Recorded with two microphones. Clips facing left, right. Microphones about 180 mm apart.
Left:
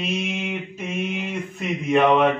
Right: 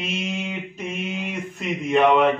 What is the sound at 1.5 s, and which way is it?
Mantra, centre (ahead or behind).